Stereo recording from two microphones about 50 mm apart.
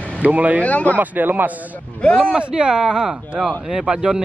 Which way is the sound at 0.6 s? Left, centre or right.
Left.